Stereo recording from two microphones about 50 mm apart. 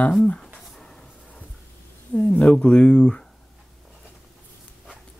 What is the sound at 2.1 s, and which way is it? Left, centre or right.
Speech, left.